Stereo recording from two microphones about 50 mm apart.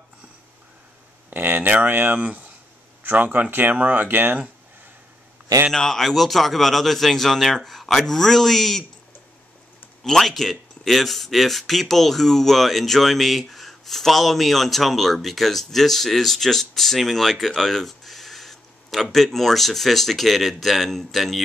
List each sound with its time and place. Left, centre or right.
1.3 s speech: right
5.8 s speech: centre
10.0 s speech: centre